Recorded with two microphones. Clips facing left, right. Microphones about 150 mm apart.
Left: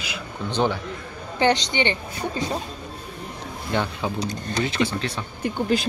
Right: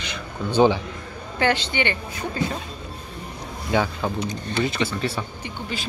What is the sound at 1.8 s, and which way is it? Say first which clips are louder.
Speech: left 1 dB; 20° left (ahead or behind).